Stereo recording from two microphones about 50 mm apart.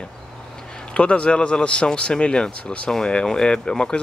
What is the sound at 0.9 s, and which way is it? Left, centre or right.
Speech, left.